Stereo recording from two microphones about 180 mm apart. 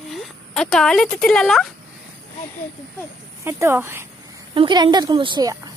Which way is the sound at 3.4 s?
15° right (ahead or behind).